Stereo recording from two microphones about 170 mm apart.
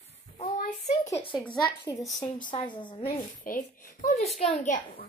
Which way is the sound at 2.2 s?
25° left (ahead or behind).